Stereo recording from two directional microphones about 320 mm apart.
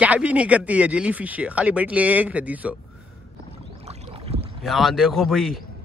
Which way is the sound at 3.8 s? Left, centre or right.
Centre.